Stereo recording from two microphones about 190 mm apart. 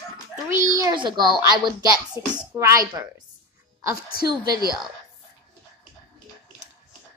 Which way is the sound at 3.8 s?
20° right (ahead or behind).